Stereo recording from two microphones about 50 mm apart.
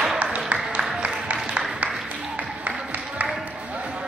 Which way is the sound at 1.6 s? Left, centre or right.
Right.